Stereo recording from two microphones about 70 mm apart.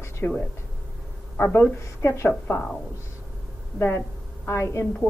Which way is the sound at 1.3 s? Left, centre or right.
Left.